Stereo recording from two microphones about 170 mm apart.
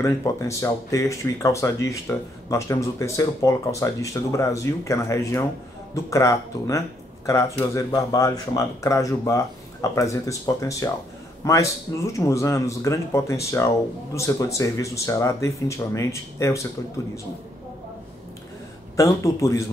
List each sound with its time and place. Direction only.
0.0 s speech: 20° left (ahead or behind)
18.9 s speech: 20° left (ahead or behind)